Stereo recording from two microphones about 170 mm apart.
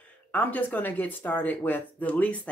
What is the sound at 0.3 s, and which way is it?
Speech, 10° left (ahead or behind).